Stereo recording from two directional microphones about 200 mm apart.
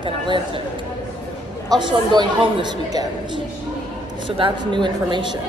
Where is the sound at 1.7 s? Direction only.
20° right (ahead or behind).